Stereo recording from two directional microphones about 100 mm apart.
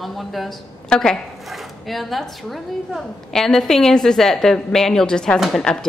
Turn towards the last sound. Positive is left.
turn(degrees=5)  # may be behind; listen again after turning